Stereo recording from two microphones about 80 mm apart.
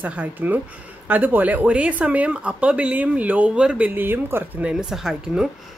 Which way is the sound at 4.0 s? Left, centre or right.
Right.